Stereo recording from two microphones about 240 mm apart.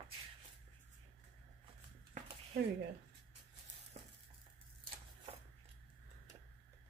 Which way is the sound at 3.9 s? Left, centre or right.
Right.